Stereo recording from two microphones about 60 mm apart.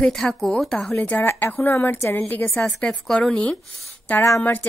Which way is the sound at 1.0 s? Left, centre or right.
Left.